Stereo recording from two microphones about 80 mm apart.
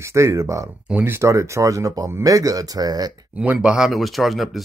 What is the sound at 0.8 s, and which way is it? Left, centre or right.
Speech, centre.